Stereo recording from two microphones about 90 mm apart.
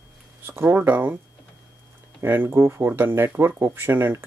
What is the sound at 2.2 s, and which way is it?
Speech, 25° right (ahead or behind).